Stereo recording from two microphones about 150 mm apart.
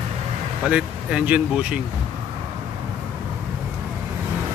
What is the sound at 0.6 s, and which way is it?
Speech, 5° right (ahead or behind).